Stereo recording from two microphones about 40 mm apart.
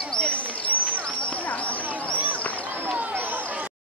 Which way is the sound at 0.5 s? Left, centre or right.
Left.